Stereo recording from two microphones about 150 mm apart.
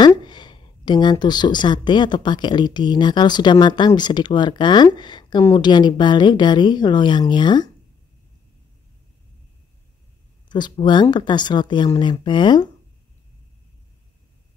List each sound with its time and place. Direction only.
0.0 s speech: 30° left (ahead or behind)
10.5 s speech: 30° left (ahead or behind)